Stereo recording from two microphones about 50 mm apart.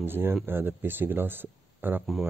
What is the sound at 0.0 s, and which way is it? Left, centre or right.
Speech, right.